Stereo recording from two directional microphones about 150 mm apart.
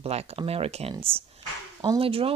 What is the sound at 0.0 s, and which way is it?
Speech, 45° right (ahead or behind).